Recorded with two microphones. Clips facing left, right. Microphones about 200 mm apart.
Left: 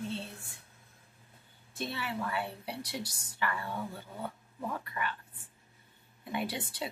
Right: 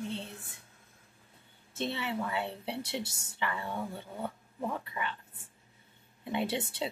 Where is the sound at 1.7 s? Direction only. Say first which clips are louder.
Right 3 dB; 20° right (ahead or behind).